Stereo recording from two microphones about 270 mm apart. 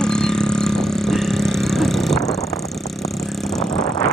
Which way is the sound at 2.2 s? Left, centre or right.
Centre.